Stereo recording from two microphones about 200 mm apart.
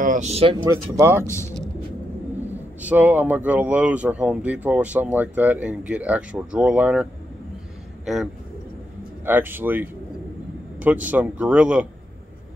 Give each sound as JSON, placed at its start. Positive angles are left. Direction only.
{"t": 0.0, "sound": "speech", "side_deg": -40}
{"t": 0.7, "sound": "speech", "side_deg": -15}
{"t": 1.2, "sound": "a man's voice", "side_deg": 15}
{"t": 2.4, "sound": "speech", "side_deg": -10}